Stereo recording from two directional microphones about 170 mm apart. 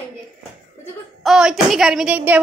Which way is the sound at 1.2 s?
Centre (ahead or behind).